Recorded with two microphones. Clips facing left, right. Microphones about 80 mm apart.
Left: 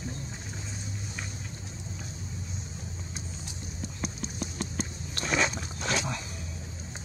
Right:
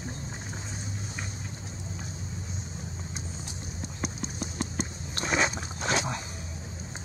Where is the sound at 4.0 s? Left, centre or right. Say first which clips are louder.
Right 1 dB; right.